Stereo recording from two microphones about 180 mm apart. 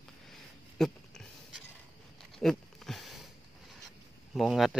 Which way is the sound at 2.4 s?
Centre (ahead or behind).